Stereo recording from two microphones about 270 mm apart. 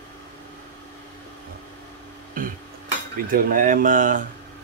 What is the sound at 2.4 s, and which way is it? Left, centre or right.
Stir, right.